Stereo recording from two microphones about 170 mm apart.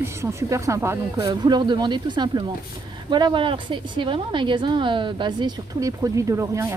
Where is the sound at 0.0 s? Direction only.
15° right (ahead or behind).